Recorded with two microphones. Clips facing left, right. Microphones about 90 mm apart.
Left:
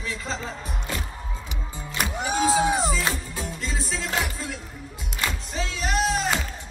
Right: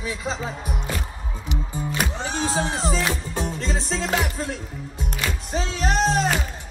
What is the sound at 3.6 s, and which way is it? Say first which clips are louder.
Music: right 4 dB; 35° right (ahead or behind).